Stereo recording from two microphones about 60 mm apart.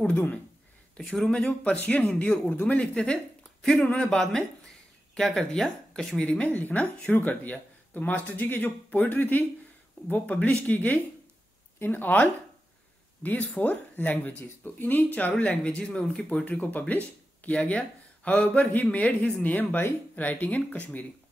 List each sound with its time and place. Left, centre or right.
1.0 s speech: centre
1.8 s speech: left; by 6.2 s centre
6.2 s speech: left
16.3 s speech: left